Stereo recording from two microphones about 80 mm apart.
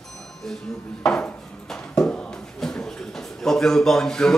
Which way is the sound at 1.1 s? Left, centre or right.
Centre.